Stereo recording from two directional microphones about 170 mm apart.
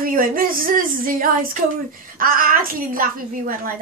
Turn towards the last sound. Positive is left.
turn(degrees=-55)  # may be behind; listen again after turning